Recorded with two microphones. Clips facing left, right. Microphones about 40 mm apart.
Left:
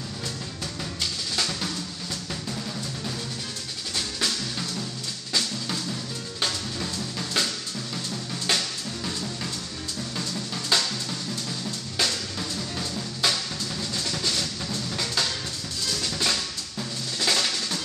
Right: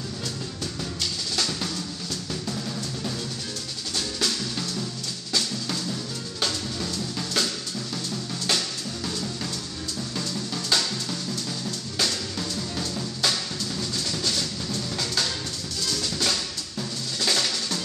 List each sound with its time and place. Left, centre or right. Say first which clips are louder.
1.3 s drum: right 1 dB; centre
6.4 s drum kit: right 1 dB; centre
8.5 s music: left 1 dB; centre
10.1 s drum: right 1 dB; centre
12.0 s drum kit: even; centre
13.2 s music: left 1 dB; centre
16.0 s drum: left 1 dB; centre